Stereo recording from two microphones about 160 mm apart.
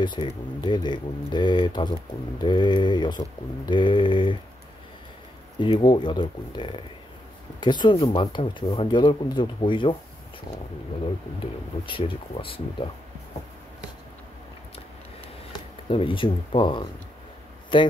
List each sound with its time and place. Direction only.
0.0 s speech: 30° left (ahead or behind)
5.6 s speech: 30° left (ahead or behind)
11.8 s speech: 35° left (ahead or behind)
15.5 s speech: 35° left (ahead or behind)